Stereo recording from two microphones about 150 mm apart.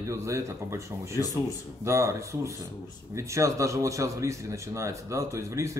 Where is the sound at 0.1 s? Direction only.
20° right (ahead or behind).